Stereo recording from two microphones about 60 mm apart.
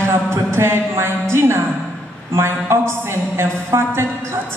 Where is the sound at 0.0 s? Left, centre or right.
Right.